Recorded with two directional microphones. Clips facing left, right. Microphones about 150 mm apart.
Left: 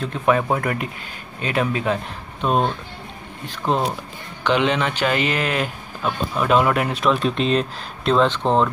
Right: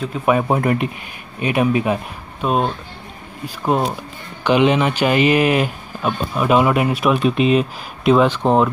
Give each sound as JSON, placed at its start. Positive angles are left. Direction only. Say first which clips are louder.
{"t": 0.0, "sound": "speech", "louder": "right 2 dB", "side_deg": -10}